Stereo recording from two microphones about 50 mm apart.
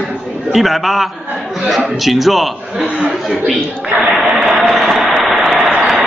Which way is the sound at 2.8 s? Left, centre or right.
Right.